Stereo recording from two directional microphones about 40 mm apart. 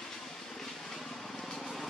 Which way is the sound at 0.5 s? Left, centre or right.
Centre.